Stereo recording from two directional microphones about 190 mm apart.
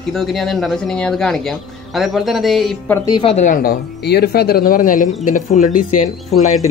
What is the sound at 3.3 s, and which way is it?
A man's voice, 45° left (ahead or behind).